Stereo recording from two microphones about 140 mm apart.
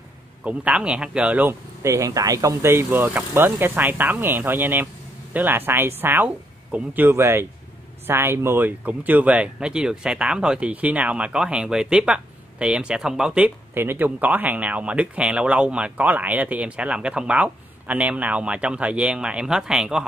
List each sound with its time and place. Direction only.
0.4 s speech: 10° right (ahead or behind)